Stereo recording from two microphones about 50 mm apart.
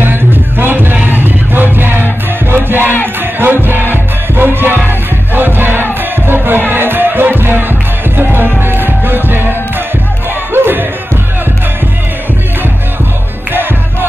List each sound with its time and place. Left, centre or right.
0.0 s music: right